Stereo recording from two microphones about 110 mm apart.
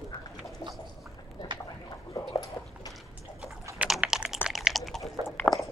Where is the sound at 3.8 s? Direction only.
10° right (ahead or behind).